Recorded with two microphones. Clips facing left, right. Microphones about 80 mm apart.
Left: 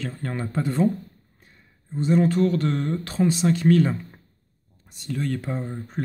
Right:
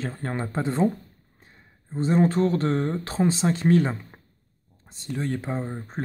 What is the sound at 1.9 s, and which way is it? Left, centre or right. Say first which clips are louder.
Speech: left 1 dB; right.